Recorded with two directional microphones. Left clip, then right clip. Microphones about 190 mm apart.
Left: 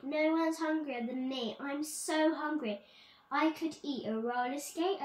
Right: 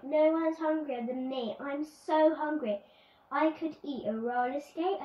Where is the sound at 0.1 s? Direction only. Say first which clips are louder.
Right 5 dB; 20° left (ahead or behind).